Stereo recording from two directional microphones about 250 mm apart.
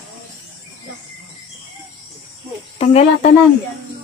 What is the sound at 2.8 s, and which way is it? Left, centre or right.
Speech, left.